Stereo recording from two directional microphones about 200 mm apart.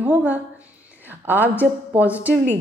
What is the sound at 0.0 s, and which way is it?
A woman's voice, 10° right (ahead or behind).